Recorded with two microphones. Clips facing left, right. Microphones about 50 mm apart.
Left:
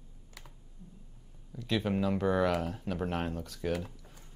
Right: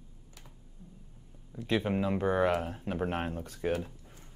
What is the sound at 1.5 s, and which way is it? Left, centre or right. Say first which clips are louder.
Speech: right 1 dB; right.